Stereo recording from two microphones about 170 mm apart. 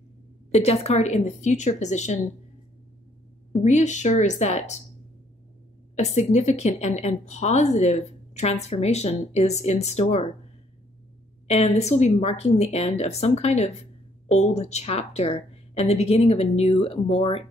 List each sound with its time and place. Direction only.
0.5 s a woman's voice: 40° left (ahead or behind)
3.6 s a woman's voice: 45° left (ahead or behind)
5.9 s a woman's voice: 40° left (ahead or behind)
11.4 s a woman's voice: 40° left (ahead or behind)